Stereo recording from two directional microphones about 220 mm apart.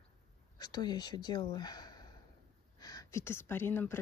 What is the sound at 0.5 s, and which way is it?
Speech, 20° left (ahead or behind).